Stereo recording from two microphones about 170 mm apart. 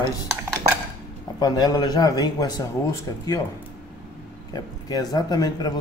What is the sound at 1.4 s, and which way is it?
Speech, 20° left (ahead or behind).